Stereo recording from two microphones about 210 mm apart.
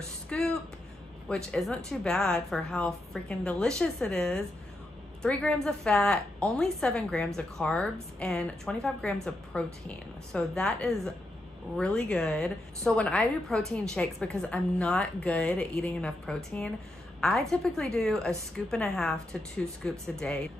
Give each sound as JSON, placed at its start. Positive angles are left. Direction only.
{"t": 0.3, "sound": "a woman's voice", "side_deg": 5}